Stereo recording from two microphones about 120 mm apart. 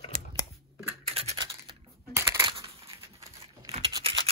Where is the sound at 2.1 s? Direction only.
20° right (ahead or behind).